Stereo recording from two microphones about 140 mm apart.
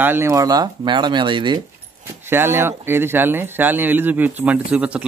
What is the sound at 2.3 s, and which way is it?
Speech, 15° right (ahead or behind).